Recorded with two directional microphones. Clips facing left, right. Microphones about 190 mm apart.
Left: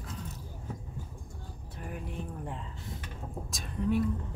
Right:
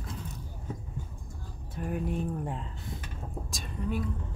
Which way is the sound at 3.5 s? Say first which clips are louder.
Left 5 dB; centre (ahead or behind).